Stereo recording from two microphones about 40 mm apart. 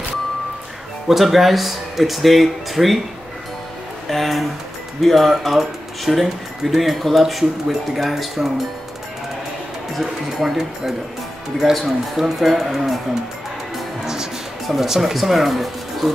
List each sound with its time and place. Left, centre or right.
1.0 s speech: centre
4.1 s speech: centre
9.9 s speech: centre
12.2 s speech: centre
14.0 s speech: centre